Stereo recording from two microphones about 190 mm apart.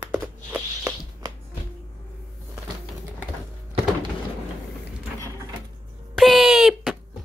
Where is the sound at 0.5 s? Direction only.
15° right (ahead or behind).